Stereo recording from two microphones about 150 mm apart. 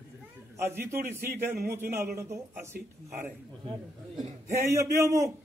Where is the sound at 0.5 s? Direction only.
15° right (ahead or behind).